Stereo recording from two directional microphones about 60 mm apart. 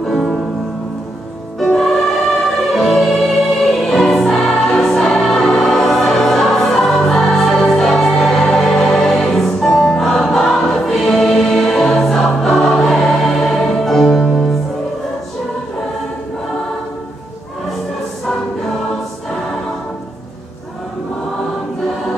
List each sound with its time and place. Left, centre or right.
0.0 s music: centre
1.7 s music: centre